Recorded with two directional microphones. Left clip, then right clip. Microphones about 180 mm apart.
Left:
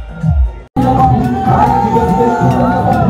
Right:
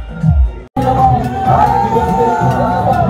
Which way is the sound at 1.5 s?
30° left (ahead or behind).